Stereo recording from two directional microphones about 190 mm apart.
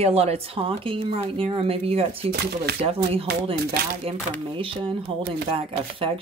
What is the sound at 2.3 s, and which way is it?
Speech, 60° right (ahead or behind).